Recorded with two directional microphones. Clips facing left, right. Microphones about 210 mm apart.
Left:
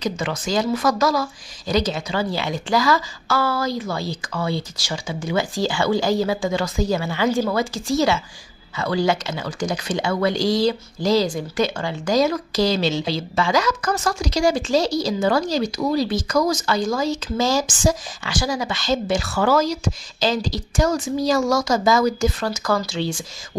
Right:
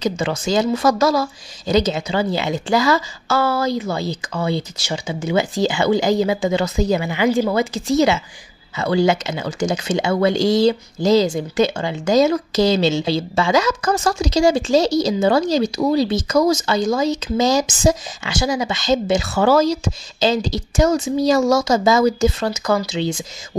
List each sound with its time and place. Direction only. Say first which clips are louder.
0.0 s speech: right 4 dB; 25° right (ahead or behind)